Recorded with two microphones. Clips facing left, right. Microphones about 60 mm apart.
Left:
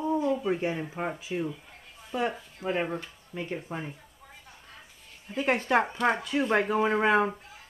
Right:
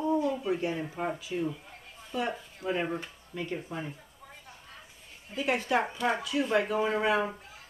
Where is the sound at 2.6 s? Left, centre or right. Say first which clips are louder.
Left 1 dB; left.